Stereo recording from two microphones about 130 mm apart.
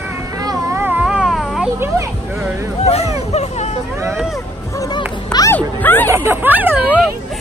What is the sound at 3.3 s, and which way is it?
Music, 55° left (ahead or behind).